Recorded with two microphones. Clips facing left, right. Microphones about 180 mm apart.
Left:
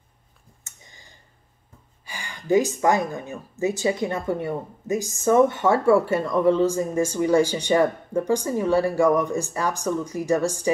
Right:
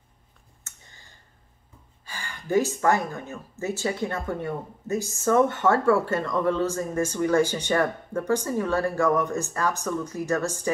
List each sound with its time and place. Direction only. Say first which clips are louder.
0.7 s clicking: left 2 dB; 15° left (ahead or behind)
2.0 s speech: left 6 dB; 15° left (ahead or behind)